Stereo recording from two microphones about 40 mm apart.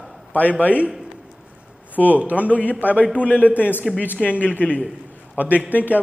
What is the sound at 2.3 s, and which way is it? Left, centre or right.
Speech, right.